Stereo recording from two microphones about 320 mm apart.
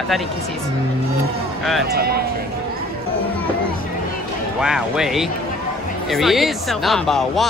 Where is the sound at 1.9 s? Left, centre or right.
Right.